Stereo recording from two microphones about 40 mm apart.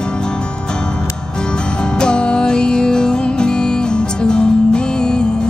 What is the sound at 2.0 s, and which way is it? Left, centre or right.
Music, left.